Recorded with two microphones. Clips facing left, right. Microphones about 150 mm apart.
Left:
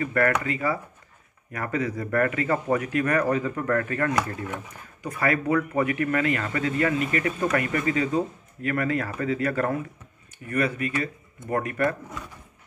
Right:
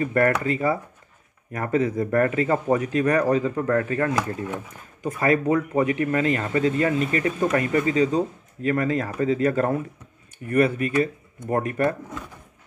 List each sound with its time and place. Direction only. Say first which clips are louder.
0.0 s speech: right 3 dB; 30° right (ahead or behind)
3.3 s speech: right 3 dB; 20° right (ahead or behind)
9.0 s speech: right 5 dB; 15° right (ahead or behind)